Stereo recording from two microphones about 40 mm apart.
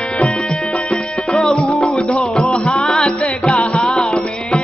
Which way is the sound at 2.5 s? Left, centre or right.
Left.